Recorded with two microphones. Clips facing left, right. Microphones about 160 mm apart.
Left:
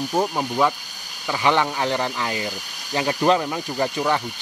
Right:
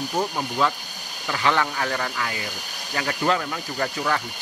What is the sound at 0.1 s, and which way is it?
Speech, 20° left (ahead or behind).